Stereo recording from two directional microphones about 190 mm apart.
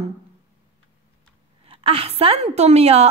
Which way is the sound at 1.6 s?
30° right (ahead or behind).